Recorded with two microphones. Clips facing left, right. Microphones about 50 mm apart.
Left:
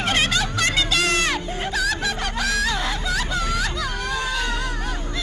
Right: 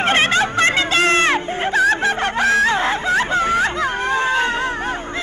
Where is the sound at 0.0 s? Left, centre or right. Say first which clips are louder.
Right 6 dB; right.